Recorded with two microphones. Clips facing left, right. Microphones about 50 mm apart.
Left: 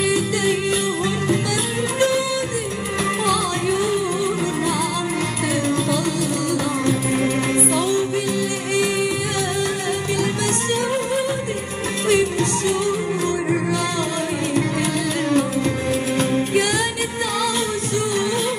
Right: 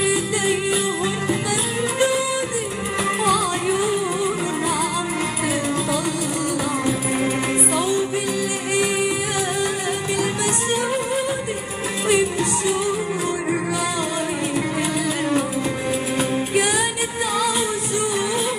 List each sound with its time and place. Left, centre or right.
0.0 s music: centre
3.3 s music: centre
6.9 s music: centre
12.1 s music: centre
15.2 s music: centre